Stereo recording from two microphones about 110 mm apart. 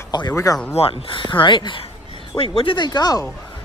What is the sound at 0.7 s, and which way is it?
Speech, 55° left (ahead or behind).